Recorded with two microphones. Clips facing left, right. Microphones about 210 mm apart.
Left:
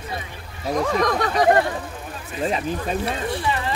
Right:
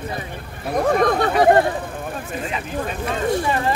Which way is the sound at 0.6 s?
55° right (ahead or behind).